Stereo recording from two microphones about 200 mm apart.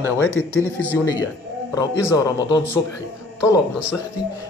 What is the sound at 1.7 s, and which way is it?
Speech, 15° left (ahead or behind).